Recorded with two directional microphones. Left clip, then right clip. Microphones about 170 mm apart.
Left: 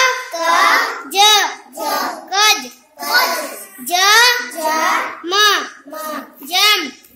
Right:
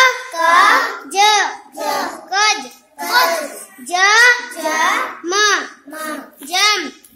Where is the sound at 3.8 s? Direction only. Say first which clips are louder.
Even; centre (ahead or behind).